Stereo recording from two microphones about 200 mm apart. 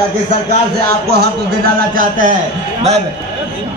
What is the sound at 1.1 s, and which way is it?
A man's voice, 50° right (ahead or behind).